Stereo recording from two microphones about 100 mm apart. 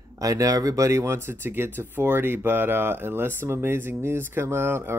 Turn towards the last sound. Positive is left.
turn(degrees=-25)  # may be behind; listen again after turning